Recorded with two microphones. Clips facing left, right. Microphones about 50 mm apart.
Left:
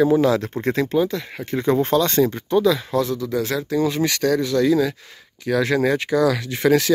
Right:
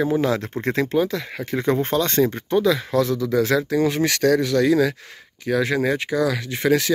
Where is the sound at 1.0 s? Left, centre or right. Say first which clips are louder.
Even; right.